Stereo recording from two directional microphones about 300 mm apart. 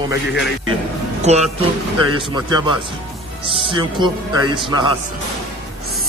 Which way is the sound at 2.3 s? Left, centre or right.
Centre.